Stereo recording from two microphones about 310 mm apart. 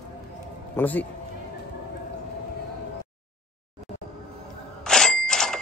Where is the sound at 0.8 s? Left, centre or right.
Centre.